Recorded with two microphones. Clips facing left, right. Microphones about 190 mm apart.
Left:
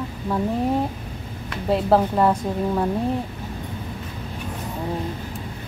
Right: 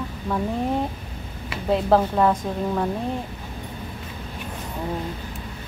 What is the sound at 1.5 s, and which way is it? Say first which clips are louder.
Speech: even; centre (ahead or behind).